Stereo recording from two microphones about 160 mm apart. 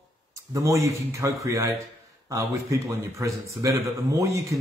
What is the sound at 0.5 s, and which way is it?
A man's voice, 20° right (ahead or behind).